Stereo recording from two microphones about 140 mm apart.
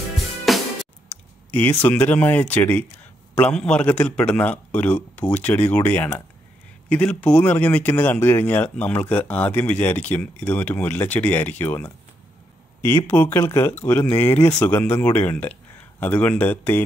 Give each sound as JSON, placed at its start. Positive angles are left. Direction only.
{"t": 0.5, "sound": "music", "side_deg": 0}
{"t": 1.0, "sound": "speech", "side_deg": 10}